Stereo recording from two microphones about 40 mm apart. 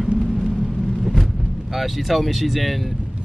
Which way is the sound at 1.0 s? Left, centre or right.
Centre.